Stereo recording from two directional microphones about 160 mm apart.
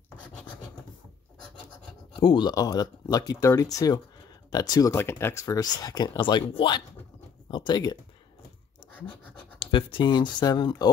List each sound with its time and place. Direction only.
2.1 s speech: 25° left (ahead or behind)
9.6 s speech: 30° left (ahead or behind)